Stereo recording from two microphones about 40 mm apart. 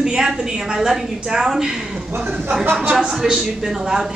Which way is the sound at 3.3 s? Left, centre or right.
Centre.